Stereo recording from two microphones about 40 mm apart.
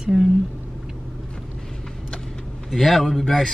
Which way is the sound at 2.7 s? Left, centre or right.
Centre.